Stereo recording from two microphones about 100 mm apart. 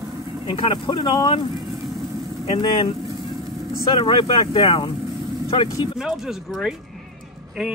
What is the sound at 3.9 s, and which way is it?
Speech, 55° left (ahead or behind).